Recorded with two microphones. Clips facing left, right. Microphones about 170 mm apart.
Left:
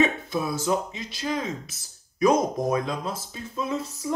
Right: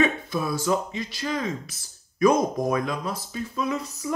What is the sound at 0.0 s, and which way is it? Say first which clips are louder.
Speech: even; 20° left (ahead or behind).